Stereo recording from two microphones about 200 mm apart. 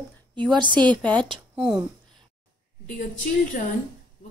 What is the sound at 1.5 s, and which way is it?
Speech, 5° right (ahead or behind).